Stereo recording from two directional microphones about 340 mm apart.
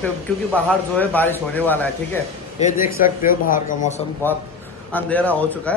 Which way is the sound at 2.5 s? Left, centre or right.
Left.